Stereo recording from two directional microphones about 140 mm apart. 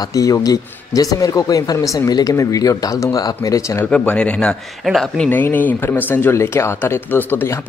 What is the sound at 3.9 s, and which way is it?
Speech, 10° left (ahead or behind).